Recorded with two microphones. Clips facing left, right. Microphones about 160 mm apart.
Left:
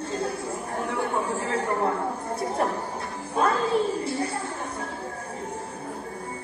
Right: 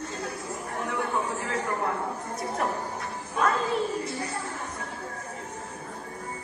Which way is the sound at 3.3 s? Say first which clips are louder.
Left 2 dB; 30° left (ahead or behind).